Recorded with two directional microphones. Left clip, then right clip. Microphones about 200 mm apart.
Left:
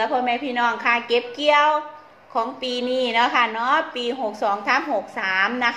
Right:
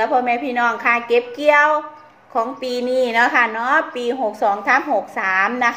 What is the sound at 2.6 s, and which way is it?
Speech, 55° right (ahead or behind).